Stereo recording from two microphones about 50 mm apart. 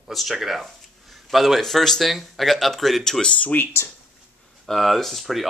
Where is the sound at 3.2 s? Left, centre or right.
Left.